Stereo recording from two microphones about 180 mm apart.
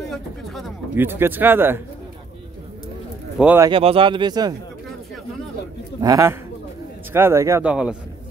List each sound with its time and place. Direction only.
0.0 s a sound: centre (ahead or behind)
0.9 s speech: 10° right (ahead or behind)
3.3 s speech: 10° right (ahead or behind)
3.6 s speech: 30° right (ahead or behind)
5.9 s a man's voice: 20° right (ahead or behind)